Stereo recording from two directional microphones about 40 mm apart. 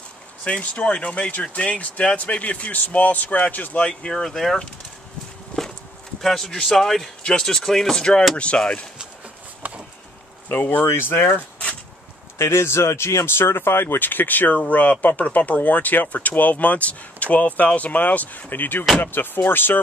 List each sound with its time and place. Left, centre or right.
0.4 s speech: left
4.1 s speech: centre
5.5 s horse: left
6.2 s speech: centre
8.5 s speech: left
9.6 s a sound: right
10.5 s speech: left
10.9 s speech: left
12.4 s speech: left
13.9 s speech: left
18.5 s speech: left